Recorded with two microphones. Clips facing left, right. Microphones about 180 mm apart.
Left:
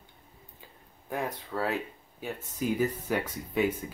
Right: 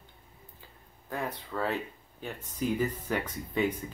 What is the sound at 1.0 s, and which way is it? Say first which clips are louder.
Speech: left 2 dB; 10° left (ahead or behind).